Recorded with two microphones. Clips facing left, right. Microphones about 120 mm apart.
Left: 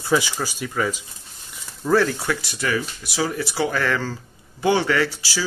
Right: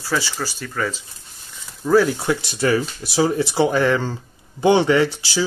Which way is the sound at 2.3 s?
25° right (ahead or behind).